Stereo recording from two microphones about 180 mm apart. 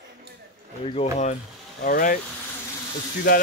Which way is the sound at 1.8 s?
50° left (ahead or behind).